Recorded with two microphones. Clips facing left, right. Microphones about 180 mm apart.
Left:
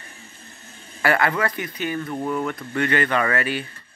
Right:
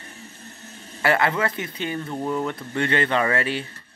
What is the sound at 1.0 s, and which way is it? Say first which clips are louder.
Speech: even; 25° right (ahead or behind).